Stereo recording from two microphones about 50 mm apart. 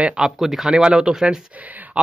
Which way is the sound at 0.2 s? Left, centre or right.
Centre.